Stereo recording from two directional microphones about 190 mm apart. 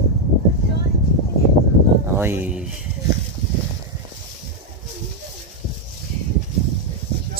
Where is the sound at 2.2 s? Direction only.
10° right (ahead or behind).